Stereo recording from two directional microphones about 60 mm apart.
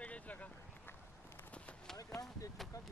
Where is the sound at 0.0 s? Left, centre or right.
Left.